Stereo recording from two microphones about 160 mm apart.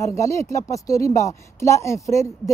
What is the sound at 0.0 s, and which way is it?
A woman's voice, 20° left (ahead or behind).